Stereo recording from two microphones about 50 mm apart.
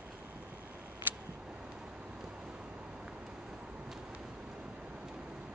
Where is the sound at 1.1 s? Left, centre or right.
Right.